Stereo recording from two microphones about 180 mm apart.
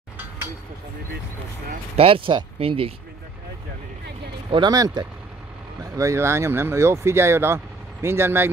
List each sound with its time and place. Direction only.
2.0 s speech: 30° right (ahead or behind)
4.5 s speech: 25° right (ahead or behind)